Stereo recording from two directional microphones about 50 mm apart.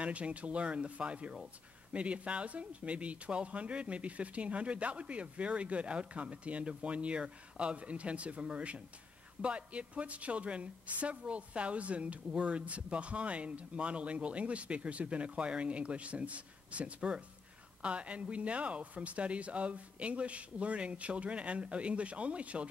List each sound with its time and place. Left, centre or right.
0.0 s a woman's voice: right